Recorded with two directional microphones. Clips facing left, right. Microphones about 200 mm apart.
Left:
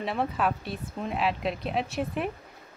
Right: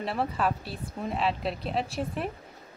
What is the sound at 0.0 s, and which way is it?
Speech, centre (ahead or behind).